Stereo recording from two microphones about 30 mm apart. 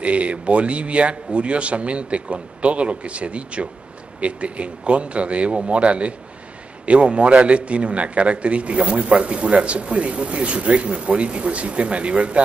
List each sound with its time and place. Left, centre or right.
0.0 s a man's voice: right